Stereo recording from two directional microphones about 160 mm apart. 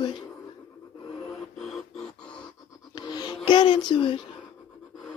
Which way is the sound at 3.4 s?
30° left (ahead or behind).